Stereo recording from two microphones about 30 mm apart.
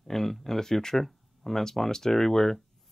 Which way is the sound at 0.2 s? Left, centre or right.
Centre.